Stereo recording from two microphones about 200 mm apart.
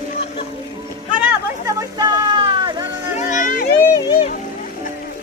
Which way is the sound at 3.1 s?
40° left (ahead or behind).